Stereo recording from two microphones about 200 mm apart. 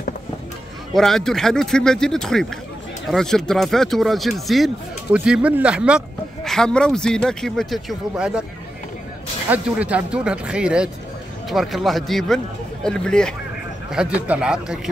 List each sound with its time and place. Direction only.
0.9 s speech: centre (ahead or behind)
9.5 s speech: 5° right (ahead or behind)